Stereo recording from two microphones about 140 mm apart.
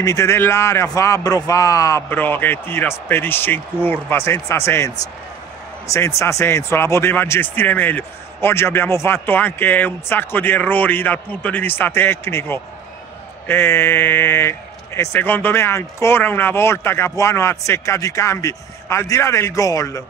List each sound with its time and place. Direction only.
0.0 s speech: 20° left (ahead or behind)